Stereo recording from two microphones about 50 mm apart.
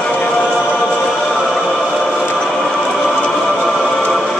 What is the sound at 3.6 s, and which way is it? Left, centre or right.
Music, centre.